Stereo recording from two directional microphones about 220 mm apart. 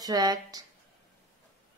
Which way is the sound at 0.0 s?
15° right (ahead or behind).